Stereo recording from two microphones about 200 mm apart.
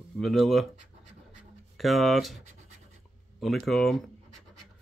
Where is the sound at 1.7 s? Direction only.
Centre (ahead or behind).